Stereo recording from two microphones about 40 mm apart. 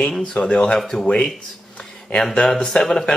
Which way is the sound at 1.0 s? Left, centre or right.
Left.